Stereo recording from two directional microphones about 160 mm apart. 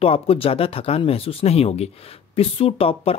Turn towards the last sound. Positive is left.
turn(degrees=35)  # may be behind; listen again after turning